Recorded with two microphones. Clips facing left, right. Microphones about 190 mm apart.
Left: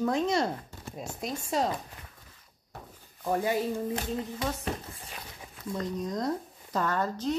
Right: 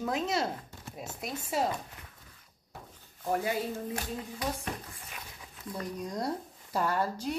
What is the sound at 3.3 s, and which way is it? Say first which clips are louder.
Speech: left 3 dB; 30° left (ahead or behind).